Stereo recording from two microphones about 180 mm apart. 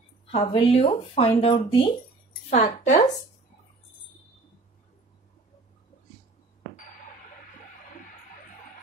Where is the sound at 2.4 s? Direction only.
45° left (ahead or behind).